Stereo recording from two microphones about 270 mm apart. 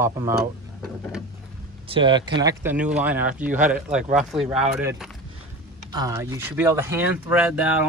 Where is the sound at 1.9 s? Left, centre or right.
Centre.